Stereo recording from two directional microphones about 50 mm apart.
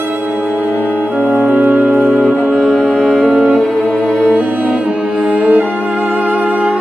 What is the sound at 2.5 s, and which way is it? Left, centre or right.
Music, centre.